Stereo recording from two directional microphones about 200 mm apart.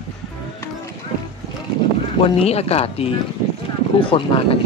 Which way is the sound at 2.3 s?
30° left (ahead or behind).